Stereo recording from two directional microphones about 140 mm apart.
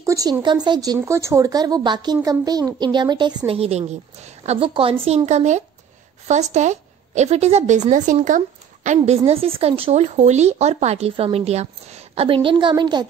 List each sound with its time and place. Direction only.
0.0 s a woman's voice: 25° right (ahead or behind)